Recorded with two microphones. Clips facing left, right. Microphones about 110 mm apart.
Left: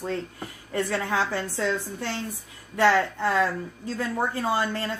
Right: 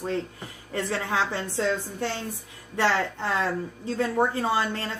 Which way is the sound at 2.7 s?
25° right (ahead or behind).